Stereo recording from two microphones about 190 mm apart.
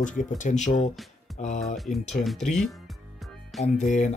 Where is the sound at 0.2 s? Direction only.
40° left (ahead or behind).